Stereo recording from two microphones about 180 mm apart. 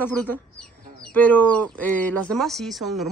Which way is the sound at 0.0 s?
10° left (ahead or behind).